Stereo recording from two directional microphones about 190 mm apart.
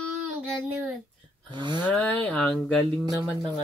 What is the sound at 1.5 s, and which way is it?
Speech, 25° right (ahead or behind).